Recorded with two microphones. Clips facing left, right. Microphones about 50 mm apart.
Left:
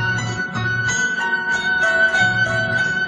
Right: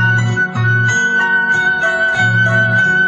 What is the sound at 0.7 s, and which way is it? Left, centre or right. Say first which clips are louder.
Music: right 6 dB; right.